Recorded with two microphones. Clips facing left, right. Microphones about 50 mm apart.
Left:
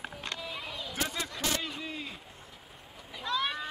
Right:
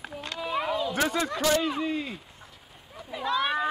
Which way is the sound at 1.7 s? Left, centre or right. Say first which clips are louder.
Right 11 dB; right.